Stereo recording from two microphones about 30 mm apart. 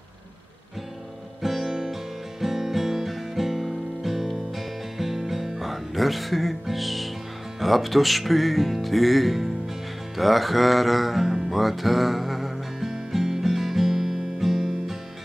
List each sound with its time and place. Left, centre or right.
1.4 s music: centre
7.6 s speech: centre
10.1 s music: centre
12.9 s music: centre